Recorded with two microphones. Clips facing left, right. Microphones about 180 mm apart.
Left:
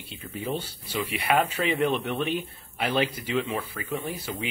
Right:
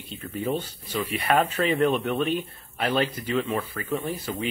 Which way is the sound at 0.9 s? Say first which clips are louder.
Right 2 dB; 10° left (ahead or behind).